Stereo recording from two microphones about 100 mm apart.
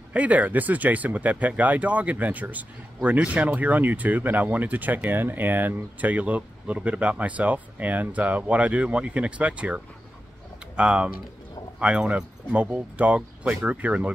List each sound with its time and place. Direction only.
0.1 s speech: 15° right (ahead or behind)
10.8 s speech: 10° right (ahead or behind)